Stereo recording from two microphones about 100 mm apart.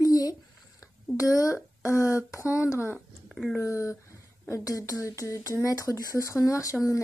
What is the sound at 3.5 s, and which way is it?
Speech, 30° left (ahead or behind).